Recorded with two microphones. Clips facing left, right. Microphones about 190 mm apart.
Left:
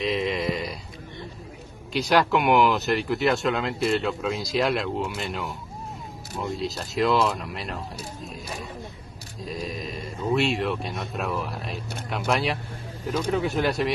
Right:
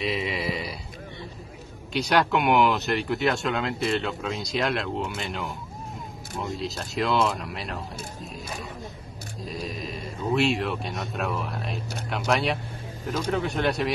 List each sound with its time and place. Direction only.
0.0 s a sound: 5° right (ahead or behind)
2.0 s speech: centre (ahead or behind)
9.4 s speech: centre (ahead or behind)